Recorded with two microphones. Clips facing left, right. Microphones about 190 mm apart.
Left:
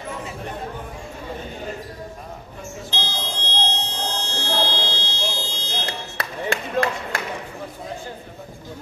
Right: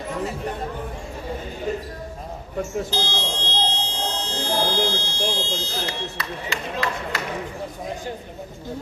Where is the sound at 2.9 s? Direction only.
40° right (ahead or behind).